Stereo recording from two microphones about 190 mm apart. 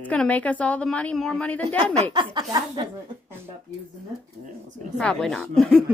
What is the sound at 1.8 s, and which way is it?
A woman's voice, 20° right (ahead or behind).